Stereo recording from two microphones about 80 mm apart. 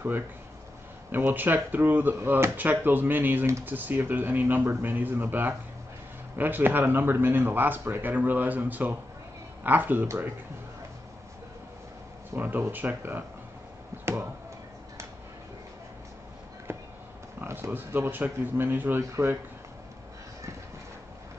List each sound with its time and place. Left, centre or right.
1.1 s speech: right
12.4 s speech: right
17.5 s speech: right